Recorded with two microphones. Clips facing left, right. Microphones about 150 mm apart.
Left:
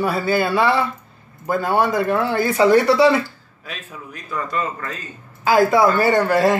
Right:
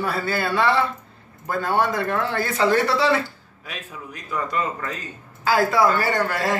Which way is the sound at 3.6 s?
15° right (ahead or behind).